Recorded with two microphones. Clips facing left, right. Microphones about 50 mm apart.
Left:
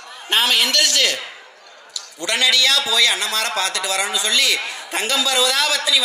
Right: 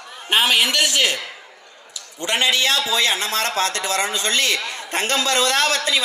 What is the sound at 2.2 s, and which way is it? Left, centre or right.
A man's voice, right.